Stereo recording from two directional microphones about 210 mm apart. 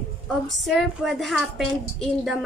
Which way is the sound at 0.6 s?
Centre (ahead or behind).